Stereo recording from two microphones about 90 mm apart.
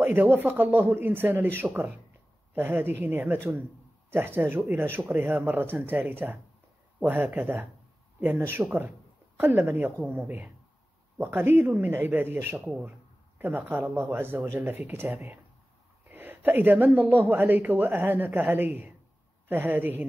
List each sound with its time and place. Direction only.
0.0 s a woman's voice: 20° right (ahead or behind)